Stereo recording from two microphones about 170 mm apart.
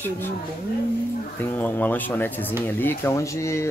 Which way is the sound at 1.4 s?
10° left (ahead or behind).